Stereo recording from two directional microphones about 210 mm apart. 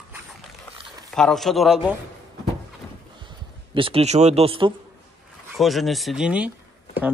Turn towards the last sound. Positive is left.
turn(degrees=-5)  # may be behind; listen again after turning